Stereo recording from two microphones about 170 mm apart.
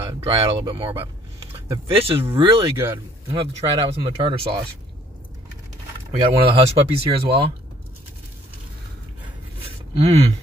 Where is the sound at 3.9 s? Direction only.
35° right (ahead or behind).